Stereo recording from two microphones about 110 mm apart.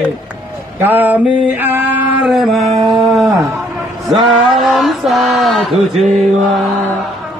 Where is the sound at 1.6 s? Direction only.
20° right (ahead or behind).